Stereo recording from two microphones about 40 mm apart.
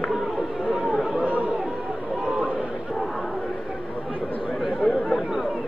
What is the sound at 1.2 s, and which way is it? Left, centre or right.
Chatter, right.